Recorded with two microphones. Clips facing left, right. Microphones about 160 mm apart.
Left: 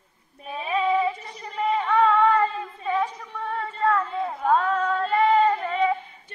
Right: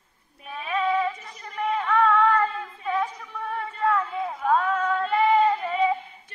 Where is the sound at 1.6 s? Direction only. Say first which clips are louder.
Left 2 dB; 10° left (ahead or behind); by 5.9 s 10° right (ahead or behind).